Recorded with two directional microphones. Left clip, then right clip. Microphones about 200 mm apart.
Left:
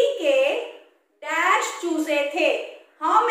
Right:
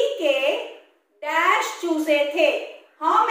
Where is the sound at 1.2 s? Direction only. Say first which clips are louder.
Right 1 dB; 20° left (ahead or behind).